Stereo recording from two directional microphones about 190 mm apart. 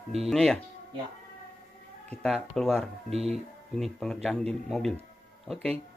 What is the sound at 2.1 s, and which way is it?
Speech, centre (ahead or behind).